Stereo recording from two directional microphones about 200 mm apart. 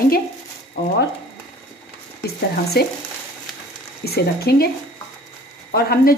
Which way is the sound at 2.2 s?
50° left (ahead or behind).